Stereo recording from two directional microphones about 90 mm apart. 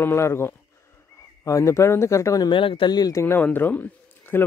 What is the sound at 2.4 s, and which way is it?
Speech, 65° left (ahead or behind).